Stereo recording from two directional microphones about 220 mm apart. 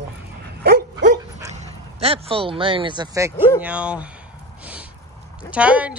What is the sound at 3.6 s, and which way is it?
Speech, 5° right (ahead or behind).